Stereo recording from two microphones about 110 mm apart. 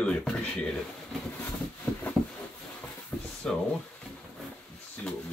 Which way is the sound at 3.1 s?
20° left (ahead or behind).